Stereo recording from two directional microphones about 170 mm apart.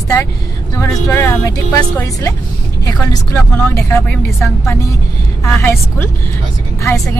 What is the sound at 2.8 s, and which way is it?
A woman's voice, 20° left (ahead or behind).